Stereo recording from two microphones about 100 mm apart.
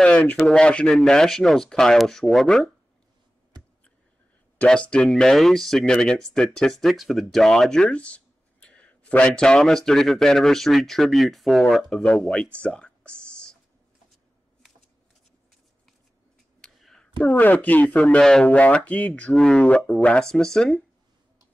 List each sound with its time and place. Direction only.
0.0 s speech: 15° left (ahead or behind)
4.6 s speech: 10° left (ahead or behind)
12.2 s a sound: 5° left (ahead or behind)
14.6 s shuffling cards: 5° right (ahead or behind)
16.6 s a sound: 5° left (ahead or behind)
17.4 s speech: 15° left (ahead or behind)